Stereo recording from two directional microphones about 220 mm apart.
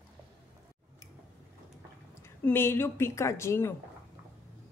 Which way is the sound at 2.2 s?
10° left (ahead or behind).